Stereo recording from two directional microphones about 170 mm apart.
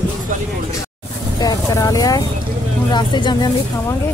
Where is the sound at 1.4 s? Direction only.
20° left (ahead or behind).